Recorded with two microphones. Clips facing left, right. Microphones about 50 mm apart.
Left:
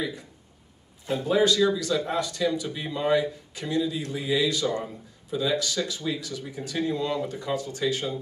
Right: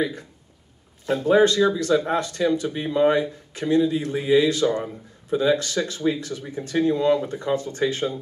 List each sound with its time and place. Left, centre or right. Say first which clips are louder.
1.0 s speech: right 5 dB; right